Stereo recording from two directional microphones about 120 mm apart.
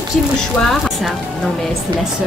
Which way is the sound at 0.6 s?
Centre (ahead or behind).